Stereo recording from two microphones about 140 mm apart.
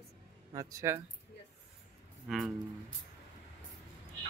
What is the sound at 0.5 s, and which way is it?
Speech, 25° right (ahead or behind).